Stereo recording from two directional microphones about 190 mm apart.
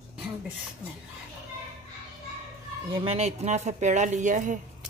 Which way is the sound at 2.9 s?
35° right (ahead or behind).